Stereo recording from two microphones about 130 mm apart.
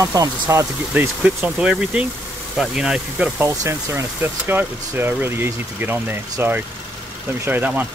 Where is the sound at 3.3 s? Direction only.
20° right (ahead or behind).